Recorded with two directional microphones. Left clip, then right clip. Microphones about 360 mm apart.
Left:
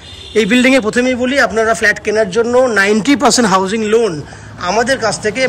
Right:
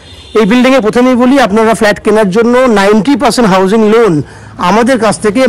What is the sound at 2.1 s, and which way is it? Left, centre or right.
Speech, right.